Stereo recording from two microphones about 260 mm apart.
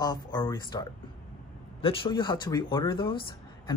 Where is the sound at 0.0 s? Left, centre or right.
Centre.